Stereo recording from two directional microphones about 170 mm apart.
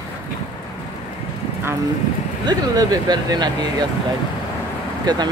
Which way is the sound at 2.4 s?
25° right (ahead or behind).